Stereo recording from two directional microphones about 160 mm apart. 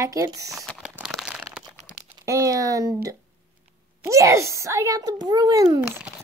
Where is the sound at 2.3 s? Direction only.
20° right (ahead or behind).